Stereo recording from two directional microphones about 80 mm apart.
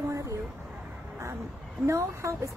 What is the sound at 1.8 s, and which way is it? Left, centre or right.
Speech, right.